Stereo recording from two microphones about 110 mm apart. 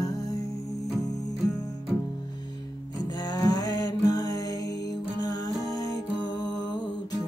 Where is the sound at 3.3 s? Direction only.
35° left (ahead or behind).